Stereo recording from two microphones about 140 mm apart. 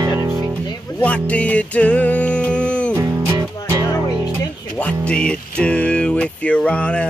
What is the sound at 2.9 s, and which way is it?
Music, 20° right (ahead or behind).